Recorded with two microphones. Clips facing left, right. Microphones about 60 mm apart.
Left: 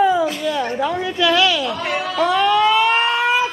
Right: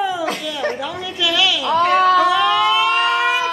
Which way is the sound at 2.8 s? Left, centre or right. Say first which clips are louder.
Even; left.